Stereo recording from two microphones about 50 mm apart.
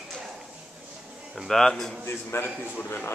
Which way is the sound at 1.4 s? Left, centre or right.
Centre.